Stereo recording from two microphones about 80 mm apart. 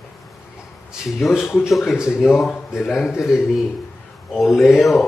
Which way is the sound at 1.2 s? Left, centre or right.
Centre.